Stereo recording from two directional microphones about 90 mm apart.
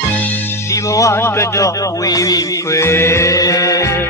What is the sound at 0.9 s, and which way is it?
Speech, 30° left (ahead or behind).